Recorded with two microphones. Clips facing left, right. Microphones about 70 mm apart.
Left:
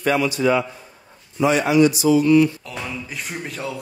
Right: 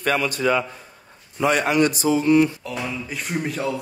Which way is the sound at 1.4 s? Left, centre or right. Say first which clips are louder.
Left 3 dB; right.